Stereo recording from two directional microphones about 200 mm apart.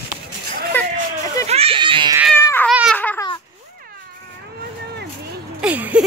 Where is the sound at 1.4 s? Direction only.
30° right (ahead or behind).